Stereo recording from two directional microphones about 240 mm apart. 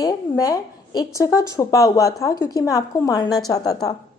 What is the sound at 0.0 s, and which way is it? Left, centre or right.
A woman's voice, centre.